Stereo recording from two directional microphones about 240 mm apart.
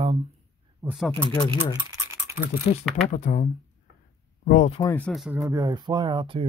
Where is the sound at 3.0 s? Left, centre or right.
Left.